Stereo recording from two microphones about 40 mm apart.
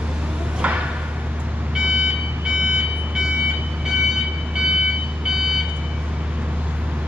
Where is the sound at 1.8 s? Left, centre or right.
Right.